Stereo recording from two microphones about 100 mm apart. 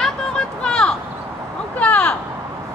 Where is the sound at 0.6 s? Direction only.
10° left (ahead or behind).